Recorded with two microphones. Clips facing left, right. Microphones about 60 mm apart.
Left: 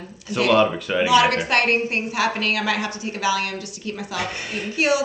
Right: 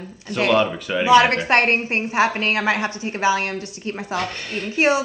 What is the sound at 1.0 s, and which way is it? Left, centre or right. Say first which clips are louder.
Speech: right 3 dB; right.